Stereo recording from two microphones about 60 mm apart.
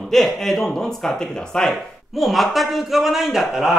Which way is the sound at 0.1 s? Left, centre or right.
Centre.